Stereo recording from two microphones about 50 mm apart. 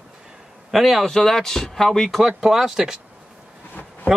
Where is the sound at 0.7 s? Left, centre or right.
Centre.